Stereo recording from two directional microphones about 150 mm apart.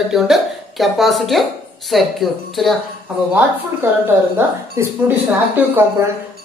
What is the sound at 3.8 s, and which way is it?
Speech, 15° right (ahead or behind).